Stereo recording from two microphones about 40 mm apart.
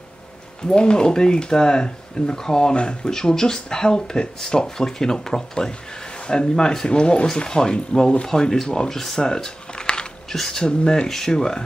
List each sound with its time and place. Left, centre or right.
0.7 s speech: left
3.1 s speech: centre
6.5 s speech: centre